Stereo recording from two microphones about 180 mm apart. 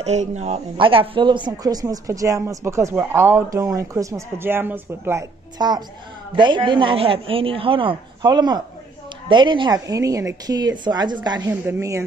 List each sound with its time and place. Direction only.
0.0 s speech: 40° right (ahead or behind); by 5.2 s 10° right (ahead or behind)
5.6 s a woman's voice: 25° right (ahead or behind)